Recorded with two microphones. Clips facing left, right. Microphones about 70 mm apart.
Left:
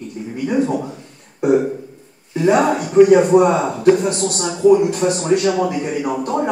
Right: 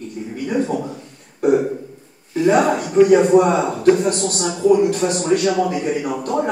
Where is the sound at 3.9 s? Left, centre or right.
Left.